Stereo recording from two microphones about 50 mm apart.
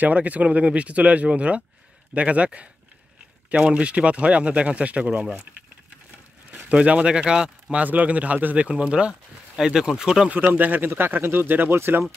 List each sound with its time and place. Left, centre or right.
0.0 s speech: right
6.7 s speech: right
7.7 s a man's voice: right; by 10.3 s centre
10.3 s a man's voice: right
11.7 s speech: right